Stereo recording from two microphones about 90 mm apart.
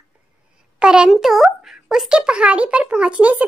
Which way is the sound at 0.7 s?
10° right (ahead or behind).